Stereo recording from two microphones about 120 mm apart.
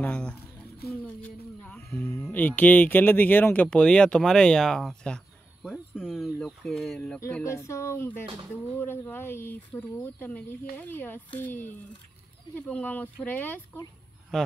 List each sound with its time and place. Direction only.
0.0 s a sound: 10° left (ahead or behind)
1.9 s music: 15° left (ahead or behind)
2.2 s speech: 15° left (ahead or behind)
7.4 s speech: 25° left (ahead or behind)
14.3 s speech: 5° left (ahead or behind)